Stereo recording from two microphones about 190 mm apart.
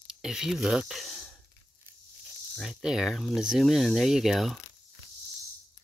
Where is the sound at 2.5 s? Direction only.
Centre (ahead or behind).